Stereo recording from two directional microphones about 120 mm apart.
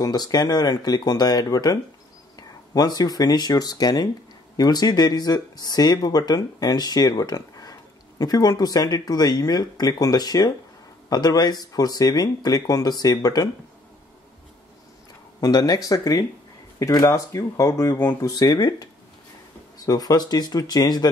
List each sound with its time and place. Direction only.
0.0 s speech: 35° left (ahead or behind)
15.4 s speech: 35° left (ahead or behind)
18.2 s speech: 35° left (ahead or behind)
19.9 s speech: 30° left (ahead or behind)